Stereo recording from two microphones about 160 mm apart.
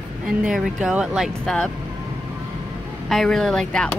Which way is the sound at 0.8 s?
5° right (ahead or behind).